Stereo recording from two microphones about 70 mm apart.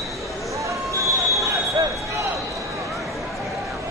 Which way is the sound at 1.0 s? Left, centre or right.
Right.